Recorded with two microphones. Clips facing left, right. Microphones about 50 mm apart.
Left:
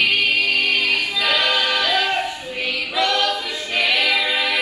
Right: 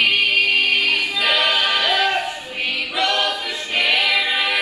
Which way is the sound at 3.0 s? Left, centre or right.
Right.